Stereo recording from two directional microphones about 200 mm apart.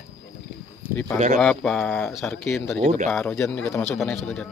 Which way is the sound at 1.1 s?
35° right (ahead or behind).